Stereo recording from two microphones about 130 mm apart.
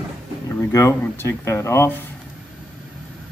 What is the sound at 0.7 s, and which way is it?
Speech, 25° left (ahead or behind).